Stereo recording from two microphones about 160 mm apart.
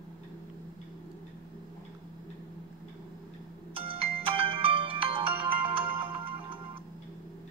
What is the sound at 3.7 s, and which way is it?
Ringtone, 35° right (ahead or behind).